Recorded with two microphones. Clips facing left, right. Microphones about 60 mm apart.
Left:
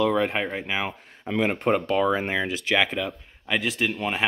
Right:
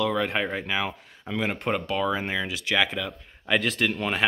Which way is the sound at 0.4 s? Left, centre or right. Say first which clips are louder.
Even; centre.